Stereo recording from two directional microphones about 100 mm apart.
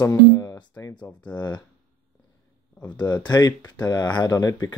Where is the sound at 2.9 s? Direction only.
45° left (ahead or behind).